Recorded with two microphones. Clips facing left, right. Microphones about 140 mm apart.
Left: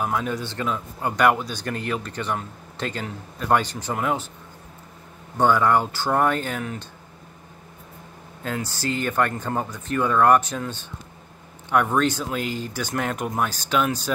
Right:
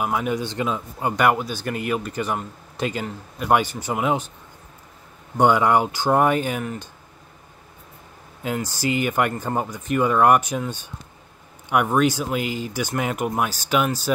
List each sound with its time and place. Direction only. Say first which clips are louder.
0.0 s speech: right 2 dB; 10° right (ahead or behind)
1.0 s speech: even; 5° right (ahead or behind)
5.4 s speech: right 2 dB; 15° right (ahead or behind)
8.4 s speech: right 3 dB; 15° right (ahead or behind)